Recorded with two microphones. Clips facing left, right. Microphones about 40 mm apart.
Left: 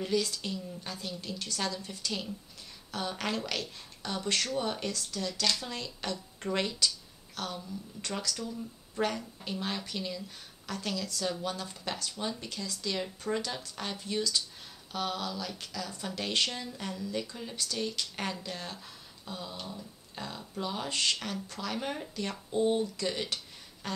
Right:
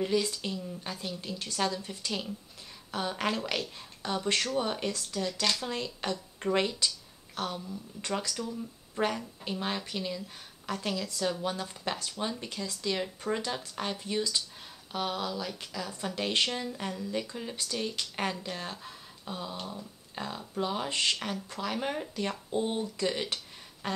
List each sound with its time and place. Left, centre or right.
0.0 s speech: centre
8.2 s speech: right
10.7 s speech: right